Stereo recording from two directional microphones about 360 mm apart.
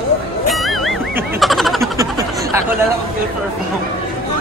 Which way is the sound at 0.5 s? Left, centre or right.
Centre.